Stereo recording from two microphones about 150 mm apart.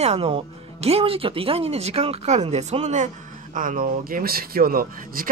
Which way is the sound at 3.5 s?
60° right (ahead or behind).